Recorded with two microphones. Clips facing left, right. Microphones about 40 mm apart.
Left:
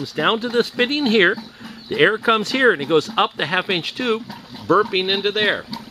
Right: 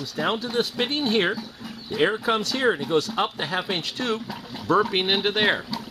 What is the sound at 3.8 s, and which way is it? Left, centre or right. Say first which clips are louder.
Speech: left 5 dB; left.